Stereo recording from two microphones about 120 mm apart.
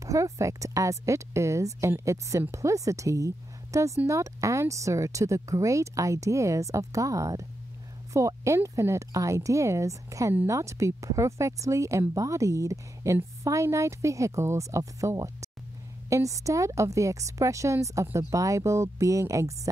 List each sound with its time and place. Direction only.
0.0 s speech: 25° right (ahead or behind)